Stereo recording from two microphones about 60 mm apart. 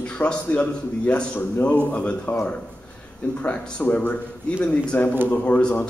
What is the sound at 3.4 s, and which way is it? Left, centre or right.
A man's voice, centre.